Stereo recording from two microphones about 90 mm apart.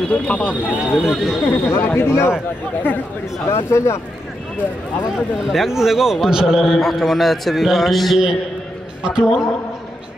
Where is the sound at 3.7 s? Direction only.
30° left (ahead or behind).